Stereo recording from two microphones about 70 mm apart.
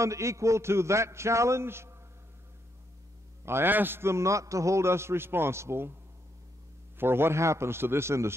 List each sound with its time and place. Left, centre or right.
0.0 s a man's voice: right
3.4 s a man's voice: right
7.0 s a man's voice: right